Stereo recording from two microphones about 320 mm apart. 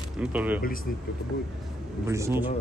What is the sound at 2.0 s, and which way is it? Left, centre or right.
Speech, centre.